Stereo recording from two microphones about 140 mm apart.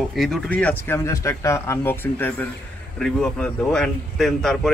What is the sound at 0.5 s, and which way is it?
Speech, 10° left (ahead or behind).